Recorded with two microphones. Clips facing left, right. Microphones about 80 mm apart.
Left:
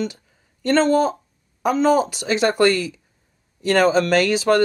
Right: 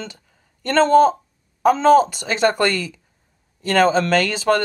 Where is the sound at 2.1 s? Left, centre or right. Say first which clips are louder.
Right 1 dB; right.